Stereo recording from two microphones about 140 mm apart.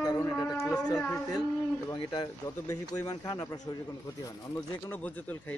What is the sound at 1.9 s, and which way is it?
Speech, 30° left (ahead or behind).